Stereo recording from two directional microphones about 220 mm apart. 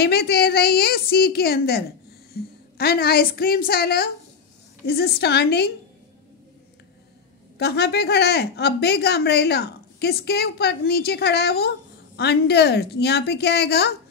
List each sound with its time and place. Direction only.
0.0 s a woman's voice: 45° left (ahead or behind)
7.5 s a woman's voice: 50° left (ahead or behind)